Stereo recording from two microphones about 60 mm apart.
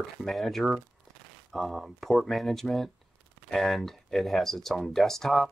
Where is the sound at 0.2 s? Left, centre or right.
Centre.